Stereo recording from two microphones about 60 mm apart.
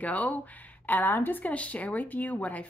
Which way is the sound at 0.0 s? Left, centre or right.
Left.